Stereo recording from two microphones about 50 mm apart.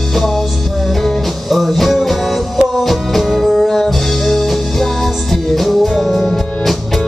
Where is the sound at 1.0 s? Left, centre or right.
Centre.